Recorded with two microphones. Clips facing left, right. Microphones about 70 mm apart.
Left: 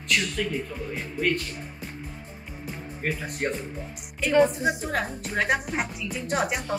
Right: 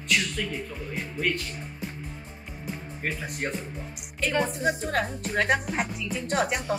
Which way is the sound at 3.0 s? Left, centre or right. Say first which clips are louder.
Left 3 dB; centre.